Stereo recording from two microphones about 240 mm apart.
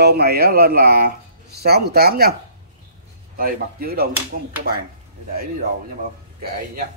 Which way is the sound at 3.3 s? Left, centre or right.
Right.